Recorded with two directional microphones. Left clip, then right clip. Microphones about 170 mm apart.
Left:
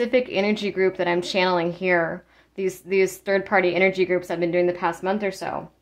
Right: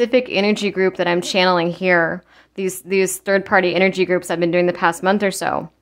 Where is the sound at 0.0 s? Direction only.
30° right (ahead or behind).